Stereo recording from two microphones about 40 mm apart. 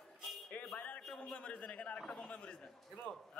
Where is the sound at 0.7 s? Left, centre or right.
Left.